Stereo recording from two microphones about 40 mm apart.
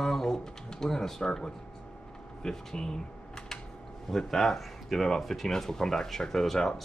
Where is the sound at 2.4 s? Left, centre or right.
Centre.